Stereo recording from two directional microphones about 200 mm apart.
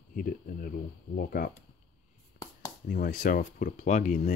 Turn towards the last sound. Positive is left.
turn(degrees=40)  # may be behind; listen again after turning